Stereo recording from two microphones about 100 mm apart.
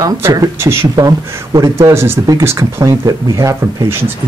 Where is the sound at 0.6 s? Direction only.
25° right (ahead or behind).